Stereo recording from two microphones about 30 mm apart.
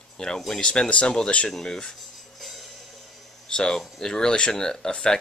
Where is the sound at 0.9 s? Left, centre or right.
Left.